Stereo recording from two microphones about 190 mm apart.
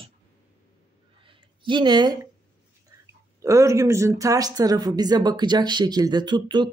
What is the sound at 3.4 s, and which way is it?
Speech, 15° right (ahead or behind).